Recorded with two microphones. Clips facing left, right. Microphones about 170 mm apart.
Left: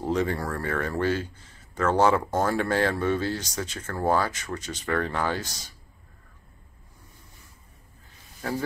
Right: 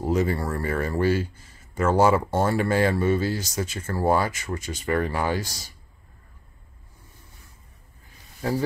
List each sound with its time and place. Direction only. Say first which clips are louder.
0.0 s speech: right 2 dB; 10° right (ahead or behind)
8.4 s speech: right 4 dB; 15° right (ahead or behind)